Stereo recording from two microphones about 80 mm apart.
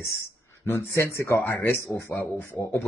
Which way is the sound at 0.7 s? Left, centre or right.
Left.